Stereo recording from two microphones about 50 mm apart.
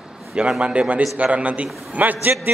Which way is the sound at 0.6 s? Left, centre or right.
Right.